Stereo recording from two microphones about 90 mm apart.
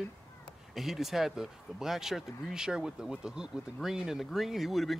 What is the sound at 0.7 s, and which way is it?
Speech, 5° right (ahead or behind).